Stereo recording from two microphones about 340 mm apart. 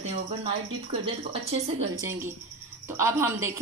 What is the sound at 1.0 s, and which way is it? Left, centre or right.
Speech, centre.